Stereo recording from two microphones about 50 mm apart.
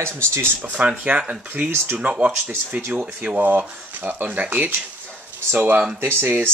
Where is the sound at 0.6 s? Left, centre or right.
Right.